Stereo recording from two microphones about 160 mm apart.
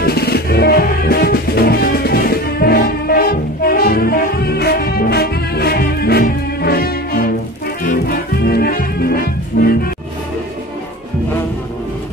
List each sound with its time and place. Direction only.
0.0 s music: 80° left